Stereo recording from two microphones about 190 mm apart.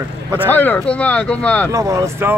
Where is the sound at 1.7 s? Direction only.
15° right (ahead or behind).